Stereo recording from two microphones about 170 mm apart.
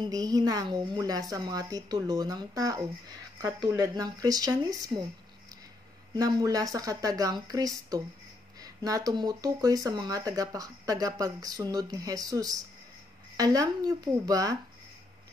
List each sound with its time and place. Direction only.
0.0 s speech: 20° right (ahead or behind)
6.1 s speech: 20° right (ahead or behind)